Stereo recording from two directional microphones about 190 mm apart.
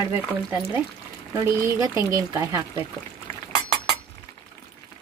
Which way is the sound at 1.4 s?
15° right (ahead or behind).